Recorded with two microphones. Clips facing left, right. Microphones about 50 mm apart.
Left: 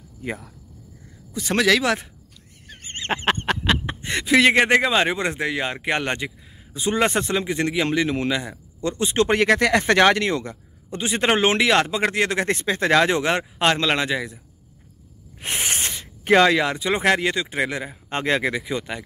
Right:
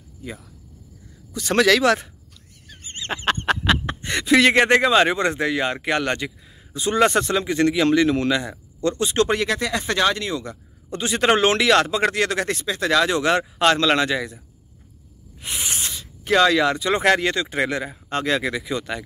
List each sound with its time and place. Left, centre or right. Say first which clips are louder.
0.2 s speech: left 5 dB; left
1.3 s a man's voice: right 2 dB; centre
2.7 s fowl: left 3 dB; left
3.4 s a sound: right 2 dB; centre
3.8 s a man's voice: right 1 dB; centre
9.3 s speech: left 5 dB; left
10.9 s a man's voice: right 2 dB; centre
12.5 s speech: left 2 dB; left
13.6 s a man's voice: right 2 dB; centre
15.4 s a sound: left 3 dB; left
16.3 s a man's voice: even; left
18.1 s speech: even; left
18.6 s a man's voice: right 1 dB; centre